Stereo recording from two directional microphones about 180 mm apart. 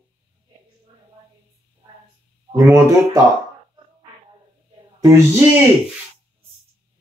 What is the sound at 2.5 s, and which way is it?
Speech, 20° right (ahead or behind).